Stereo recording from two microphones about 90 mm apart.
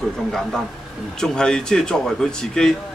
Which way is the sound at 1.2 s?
10° left (ahead or behind).